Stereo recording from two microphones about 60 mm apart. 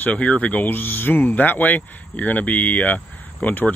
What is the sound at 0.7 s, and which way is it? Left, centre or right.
Speech, left.